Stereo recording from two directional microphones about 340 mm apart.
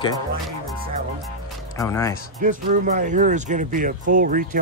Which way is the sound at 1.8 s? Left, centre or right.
Centre.